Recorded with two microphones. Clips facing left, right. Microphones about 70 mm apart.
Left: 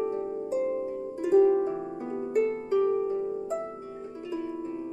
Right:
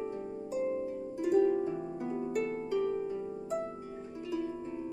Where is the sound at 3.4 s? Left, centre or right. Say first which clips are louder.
Left 3 dB; left.